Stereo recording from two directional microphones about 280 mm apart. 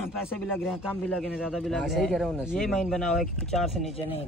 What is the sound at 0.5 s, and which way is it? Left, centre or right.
A man's voice, centre.